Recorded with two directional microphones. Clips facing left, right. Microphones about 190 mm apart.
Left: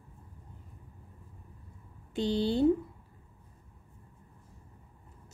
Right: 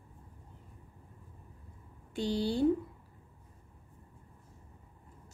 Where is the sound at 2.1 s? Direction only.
20° left (ahead or behind).